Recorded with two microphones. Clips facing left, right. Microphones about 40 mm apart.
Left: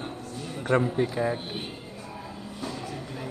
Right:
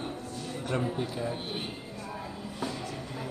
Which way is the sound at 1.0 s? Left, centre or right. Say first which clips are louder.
Left 7 dB; left.